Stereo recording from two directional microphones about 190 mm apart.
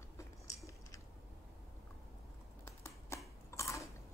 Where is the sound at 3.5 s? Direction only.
15° left (ahead or behind).